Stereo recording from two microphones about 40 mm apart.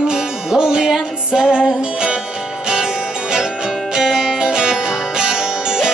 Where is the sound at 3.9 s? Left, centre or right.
Centre.